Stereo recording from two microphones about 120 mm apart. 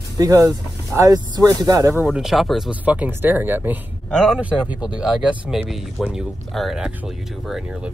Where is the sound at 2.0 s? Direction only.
5° right (ahead or behind).